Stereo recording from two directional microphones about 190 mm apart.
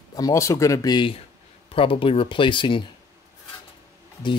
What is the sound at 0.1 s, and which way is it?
Speech, 15° left (ahead or behind).